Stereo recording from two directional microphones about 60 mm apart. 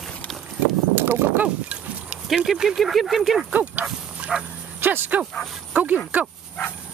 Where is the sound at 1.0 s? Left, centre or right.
Right.